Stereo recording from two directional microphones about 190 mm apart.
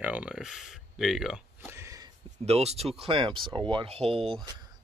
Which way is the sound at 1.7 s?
15° right (ahead or behind).